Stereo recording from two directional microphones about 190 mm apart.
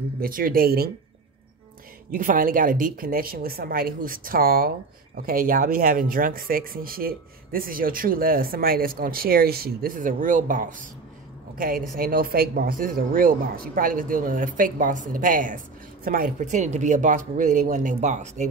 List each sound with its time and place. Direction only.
0.2 s a woman's voice: 50° right (ahead or behind)
2.0 s a woman's voice: 45° right (ahead or behind)